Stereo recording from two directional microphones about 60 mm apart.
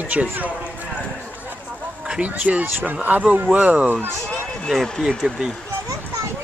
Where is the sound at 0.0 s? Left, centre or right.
Right.